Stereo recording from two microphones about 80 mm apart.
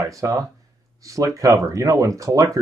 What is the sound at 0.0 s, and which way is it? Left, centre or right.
Speech, right.